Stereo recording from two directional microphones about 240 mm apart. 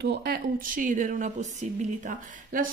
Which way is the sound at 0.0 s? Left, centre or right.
Right.